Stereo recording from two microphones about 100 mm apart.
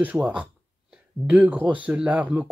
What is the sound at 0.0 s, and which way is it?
Speech, 15° right (ahead or behind).